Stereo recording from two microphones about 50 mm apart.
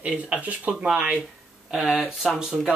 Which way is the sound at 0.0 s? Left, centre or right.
Centre.